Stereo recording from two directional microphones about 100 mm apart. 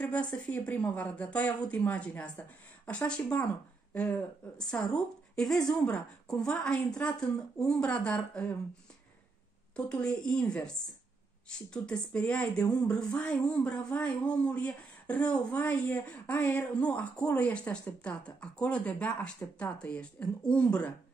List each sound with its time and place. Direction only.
0.0 s speech: 10° left (ahead or behind)
9.8 s speech: 10° left (ahead or behind)